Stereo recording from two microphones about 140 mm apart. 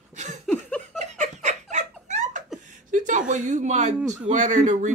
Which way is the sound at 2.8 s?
65° right (ahead or behind).